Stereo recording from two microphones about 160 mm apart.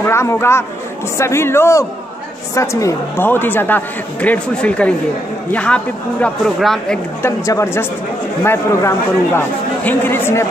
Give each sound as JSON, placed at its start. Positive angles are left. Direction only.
{"t": 0.0, "sound": "speech", "side_deg": 15}
{"t": 7.2, "sound": "speech", "side_deg": 15}